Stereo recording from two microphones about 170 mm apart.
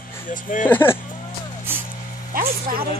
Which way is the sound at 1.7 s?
15° right (ahead or behind).